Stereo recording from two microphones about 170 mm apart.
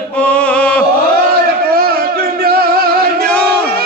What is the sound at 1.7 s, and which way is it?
Music, 65° right (ahead or behind).